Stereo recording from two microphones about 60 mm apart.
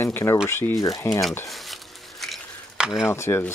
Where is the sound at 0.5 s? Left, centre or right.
Left.